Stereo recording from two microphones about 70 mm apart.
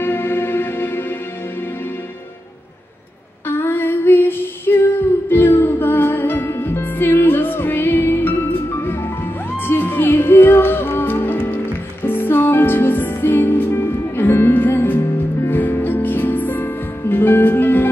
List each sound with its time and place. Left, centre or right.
0.0 s music: left
3.4 s female singing: left
11.4 s music: left